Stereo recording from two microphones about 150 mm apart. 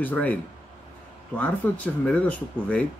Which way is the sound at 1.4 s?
10° left (ahead or behind).